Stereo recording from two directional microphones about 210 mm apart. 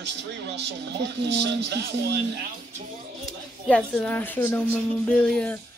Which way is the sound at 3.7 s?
5° left (ahead or behind).